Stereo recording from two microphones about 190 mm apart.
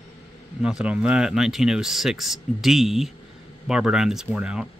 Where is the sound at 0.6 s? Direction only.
5° right (ahead or behind).